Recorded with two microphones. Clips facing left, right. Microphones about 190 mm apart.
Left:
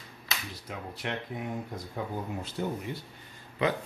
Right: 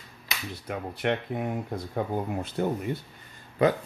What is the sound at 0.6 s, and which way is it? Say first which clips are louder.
Speech: right 9 dB; 60° right (ahead or behind).